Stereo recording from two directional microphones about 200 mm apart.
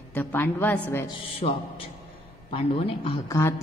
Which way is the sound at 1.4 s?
30° left (ahead or behind).